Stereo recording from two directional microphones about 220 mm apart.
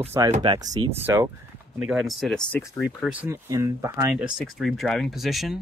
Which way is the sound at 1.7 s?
Centre (ahead or behind).